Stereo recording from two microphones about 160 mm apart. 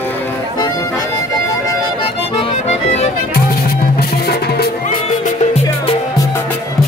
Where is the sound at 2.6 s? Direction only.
40° left (ahead or behind).